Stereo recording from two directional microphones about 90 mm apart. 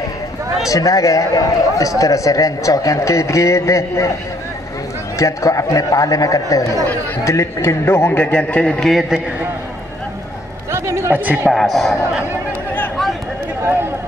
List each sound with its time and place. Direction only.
0.7 s a man's voice: 40° left (ahead or behind)
5.2 s a man's voice: 35° left (ahead or behind)
8.3 s a man's voice: 15° left (ahead or behind)
10.7 s a sound: 30° right (ahead or behind)
11.1 s speech: 20° right (ahead or behind)
11.5 s speech: centre (ahead or behind)